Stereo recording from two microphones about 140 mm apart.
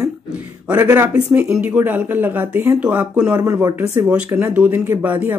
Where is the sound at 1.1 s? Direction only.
5° right (ahead or behind).